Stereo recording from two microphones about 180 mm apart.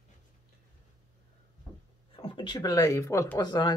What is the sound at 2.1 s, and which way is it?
Speech, 30° left (ahead or behind).